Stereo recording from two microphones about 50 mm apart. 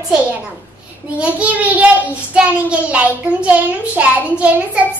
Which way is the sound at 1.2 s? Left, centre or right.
Right.